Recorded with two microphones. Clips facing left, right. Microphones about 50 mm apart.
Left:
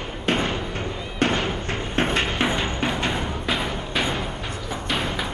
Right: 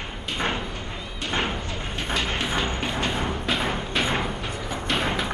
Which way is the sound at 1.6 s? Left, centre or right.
Left.